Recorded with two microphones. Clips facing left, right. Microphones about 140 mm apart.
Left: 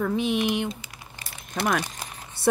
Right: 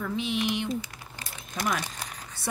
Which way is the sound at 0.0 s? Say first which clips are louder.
Left 5 dB; 55° left (ahead or behind).